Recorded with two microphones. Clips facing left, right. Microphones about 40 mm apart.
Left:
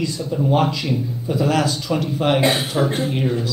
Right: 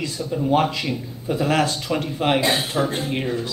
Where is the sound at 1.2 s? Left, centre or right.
Right.